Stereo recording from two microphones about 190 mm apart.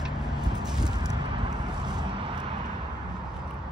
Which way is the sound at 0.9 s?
20° right (ahead or behind).